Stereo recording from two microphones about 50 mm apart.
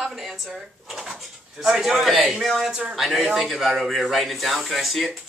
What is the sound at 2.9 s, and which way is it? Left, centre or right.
Speech, centre.